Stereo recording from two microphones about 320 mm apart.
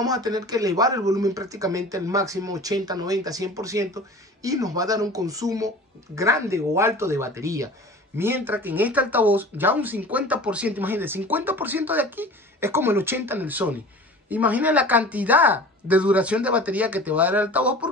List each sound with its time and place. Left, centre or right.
0.0 s speech: centre